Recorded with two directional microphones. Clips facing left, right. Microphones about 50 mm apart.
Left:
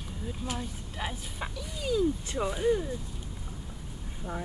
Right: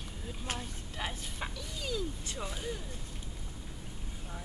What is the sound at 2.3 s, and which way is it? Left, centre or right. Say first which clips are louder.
Speech: left 12 dB; left.